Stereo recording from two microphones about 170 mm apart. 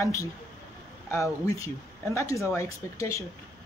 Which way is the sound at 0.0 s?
20° left (ahead or behind).